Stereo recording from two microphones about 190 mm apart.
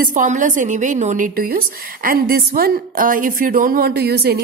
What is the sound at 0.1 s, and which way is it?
A woman's voice, 40° right (ahead or behind).